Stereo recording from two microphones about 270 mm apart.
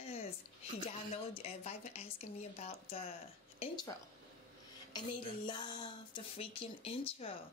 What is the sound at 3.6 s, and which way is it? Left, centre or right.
Speech, centre.